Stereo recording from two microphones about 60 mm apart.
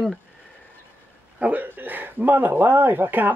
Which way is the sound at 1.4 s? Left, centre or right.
Right.